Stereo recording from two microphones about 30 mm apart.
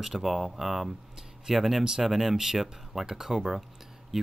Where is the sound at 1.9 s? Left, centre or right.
Centre.